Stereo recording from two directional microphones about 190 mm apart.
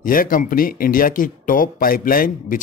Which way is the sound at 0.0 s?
45° left (ahead or behind).